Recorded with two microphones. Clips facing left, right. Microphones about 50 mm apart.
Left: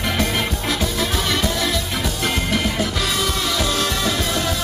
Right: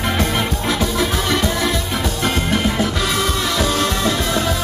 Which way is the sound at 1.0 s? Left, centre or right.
Right.